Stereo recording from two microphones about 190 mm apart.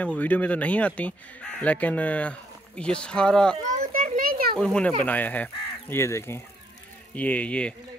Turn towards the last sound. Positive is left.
turn(degrees=5)  # may be behind; listen again after turning